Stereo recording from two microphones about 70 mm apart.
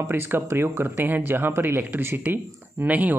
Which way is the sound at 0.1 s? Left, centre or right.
Right.